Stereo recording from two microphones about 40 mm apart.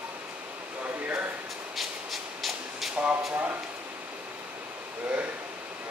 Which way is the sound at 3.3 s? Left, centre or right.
Right.